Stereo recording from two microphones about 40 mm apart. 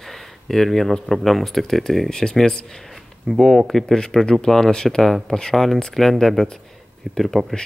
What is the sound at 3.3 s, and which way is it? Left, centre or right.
Speech, centre.